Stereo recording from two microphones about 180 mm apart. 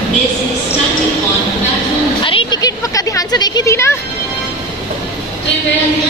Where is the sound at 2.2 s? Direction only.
30° left (ahead or behind).